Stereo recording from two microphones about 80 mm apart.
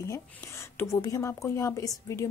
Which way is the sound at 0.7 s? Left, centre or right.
Left.